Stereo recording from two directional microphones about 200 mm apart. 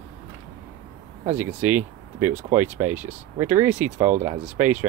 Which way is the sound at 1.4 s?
10° right (ahead or behind).